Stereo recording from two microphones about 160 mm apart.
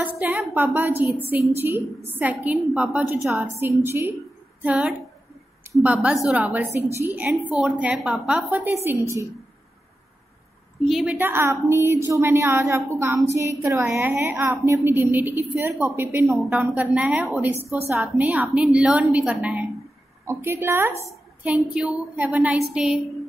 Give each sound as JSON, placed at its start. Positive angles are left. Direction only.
{"t": 0.0, "sound": "a woman's voice", "side_deg": -10}
{"t": 10.9, "sound": "a woman's voice", "side_deg": 0}
{"t": 11.1, "sound": "a woman's voice", "side_deg": -15}